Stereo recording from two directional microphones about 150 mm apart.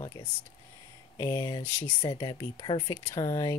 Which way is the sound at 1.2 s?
25° left (ahead or behind).